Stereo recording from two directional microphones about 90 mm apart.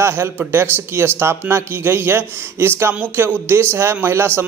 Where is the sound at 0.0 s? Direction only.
25° right (ahead or behind).